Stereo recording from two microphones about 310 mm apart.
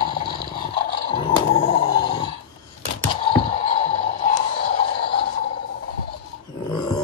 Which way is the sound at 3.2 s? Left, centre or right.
Centre.